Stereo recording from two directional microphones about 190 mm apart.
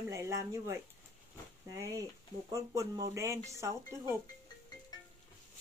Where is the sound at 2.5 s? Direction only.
15° right (ahead or behind).